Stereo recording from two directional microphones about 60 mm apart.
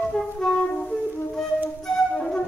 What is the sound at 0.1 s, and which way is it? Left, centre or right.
Music, centre.